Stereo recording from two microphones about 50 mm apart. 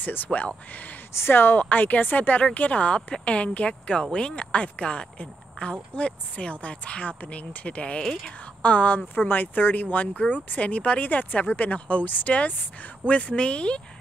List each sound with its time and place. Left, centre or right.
0.0 s speech: left
1.1 s speech: left
1.6 s speech: left
8.0 s speech: centre
8.6 s speech: left